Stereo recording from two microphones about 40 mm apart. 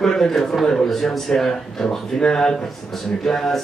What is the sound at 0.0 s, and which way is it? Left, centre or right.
A man's voice, centre.